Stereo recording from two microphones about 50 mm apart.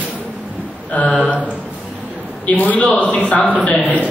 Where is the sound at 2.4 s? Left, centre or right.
Left.